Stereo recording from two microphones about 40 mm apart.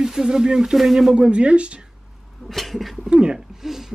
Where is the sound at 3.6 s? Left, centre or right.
Centre.